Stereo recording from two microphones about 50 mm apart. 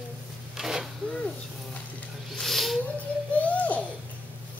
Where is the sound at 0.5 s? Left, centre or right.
Centre.